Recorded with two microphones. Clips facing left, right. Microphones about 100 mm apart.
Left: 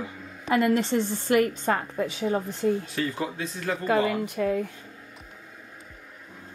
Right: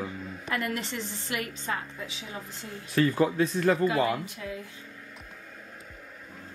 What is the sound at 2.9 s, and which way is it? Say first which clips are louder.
Speech: right 5 dB; 50° right (ahead or behind).